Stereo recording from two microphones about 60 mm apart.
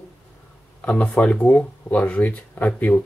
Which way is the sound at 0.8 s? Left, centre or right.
Left.